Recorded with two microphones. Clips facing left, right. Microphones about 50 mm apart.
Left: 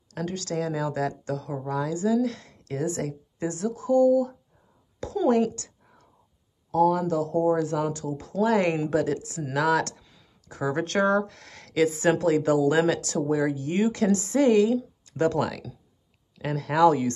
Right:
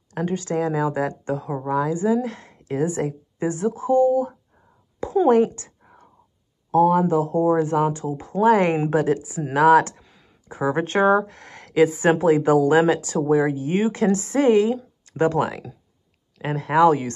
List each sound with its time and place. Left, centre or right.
0.1 s a woman's voice: right
9.1 s speech: centre